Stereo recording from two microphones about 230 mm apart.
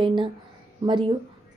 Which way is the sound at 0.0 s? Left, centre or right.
Right.